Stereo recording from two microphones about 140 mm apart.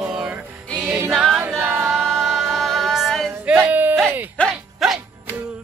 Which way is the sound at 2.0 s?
Centre (ahead or behind).